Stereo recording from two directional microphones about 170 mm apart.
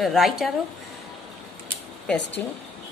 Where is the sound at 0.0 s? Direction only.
Centre (ahead or behind).